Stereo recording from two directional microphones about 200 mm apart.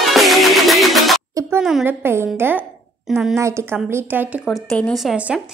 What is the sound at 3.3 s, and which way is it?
A woman's voice, 15° right (ahead or behind).